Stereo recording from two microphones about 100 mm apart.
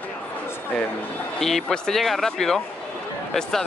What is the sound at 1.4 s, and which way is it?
Speech, 5° left (ahead or behind).